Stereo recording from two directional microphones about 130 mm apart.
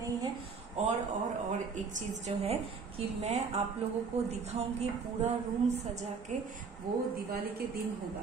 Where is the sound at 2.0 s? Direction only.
55° right (ahead or behind).